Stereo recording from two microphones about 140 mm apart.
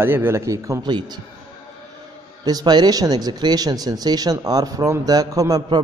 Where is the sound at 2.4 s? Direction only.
30° right (ahead or behind).